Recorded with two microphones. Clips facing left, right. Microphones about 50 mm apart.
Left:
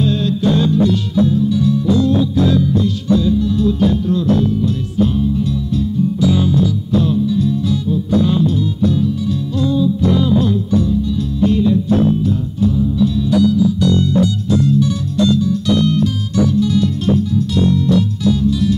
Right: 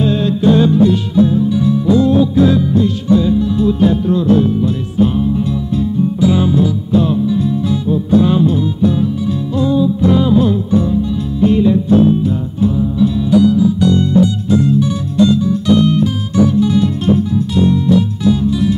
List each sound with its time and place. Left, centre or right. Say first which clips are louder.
0.0 s music: right 3 dB; right